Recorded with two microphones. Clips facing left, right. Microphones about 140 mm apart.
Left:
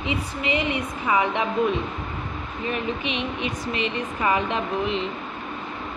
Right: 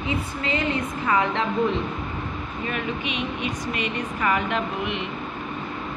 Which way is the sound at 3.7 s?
25° left (ahead or behind).